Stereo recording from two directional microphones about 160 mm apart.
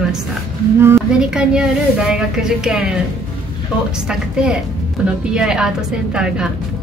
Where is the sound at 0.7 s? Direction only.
15° right (ahead or behind).